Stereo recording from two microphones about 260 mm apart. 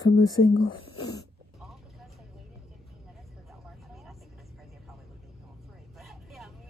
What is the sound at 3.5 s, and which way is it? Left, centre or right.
Vehicle, centre.